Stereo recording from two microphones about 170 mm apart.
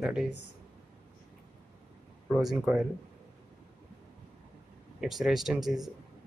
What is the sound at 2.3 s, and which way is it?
Speech, 5° right (ahead or behind).